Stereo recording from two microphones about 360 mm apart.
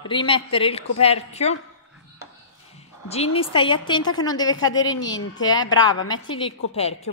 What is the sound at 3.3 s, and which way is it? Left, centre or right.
A woman's voice, centre.